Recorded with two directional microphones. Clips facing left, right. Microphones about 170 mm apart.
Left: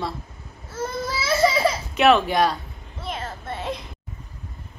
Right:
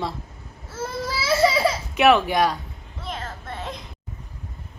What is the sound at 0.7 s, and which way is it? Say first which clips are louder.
Baby cry: left 1 dB; 5° right (ahead or behind).